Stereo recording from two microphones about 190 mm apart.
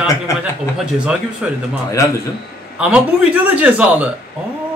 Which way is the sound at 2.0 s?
15° left (ahead or behind).